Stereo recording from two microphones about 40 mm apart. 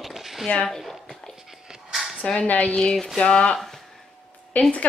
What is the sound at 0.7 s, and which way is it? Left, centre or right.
Speech, centre.